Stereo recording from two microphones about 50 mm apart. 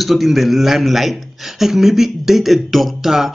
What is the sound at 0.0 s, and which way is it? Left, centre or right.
A man's voice, centre.